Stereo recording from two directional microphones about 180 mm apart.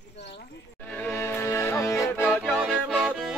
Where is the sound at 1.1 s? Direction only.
15° left (ahead or behind).